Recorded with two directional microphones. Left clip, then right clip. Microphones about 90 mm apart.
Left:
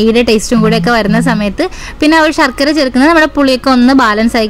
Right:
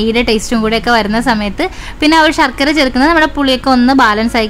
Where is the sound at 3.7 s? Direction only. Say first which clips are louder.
Right 1 dB; 25° left (ahead or behind).